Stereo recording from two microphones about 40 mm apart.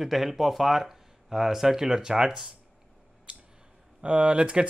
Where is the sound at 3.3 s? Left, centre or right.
Right.